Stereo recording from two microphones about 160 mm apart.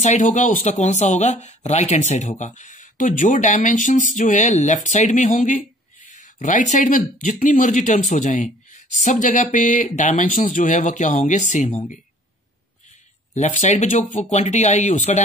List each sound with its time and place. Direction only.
0.0 s speech: 50° left (ahead or behind)
13.3 s speech: 50° left (ahead or behind)